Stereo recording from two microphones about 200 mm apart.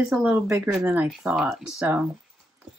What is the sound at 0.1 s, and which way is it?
Speech, 5° right (ahead or behind).